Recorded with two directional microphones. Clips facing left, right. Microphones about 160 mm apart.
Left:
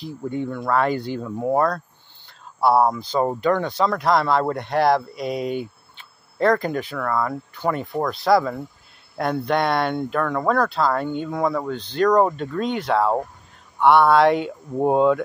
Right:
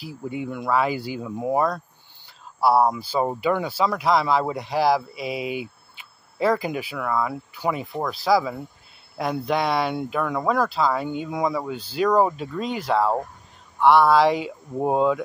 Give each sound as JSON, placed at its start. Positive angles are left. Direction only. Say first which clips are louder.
{"t": 0.0, "sound": "speech", "louder": "left 3 dB", "side_deg": -10}